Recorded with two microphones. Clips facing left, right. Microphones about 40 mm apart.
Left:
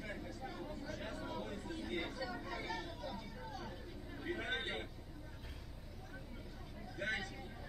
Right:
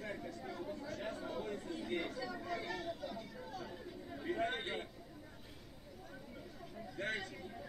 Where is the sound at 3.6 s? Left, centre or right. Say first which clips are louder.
Right 2 dB; centre.